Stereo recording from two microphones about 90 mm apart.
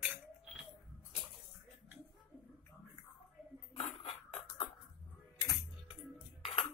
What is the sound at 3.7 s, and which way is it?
Dishes, 90° left.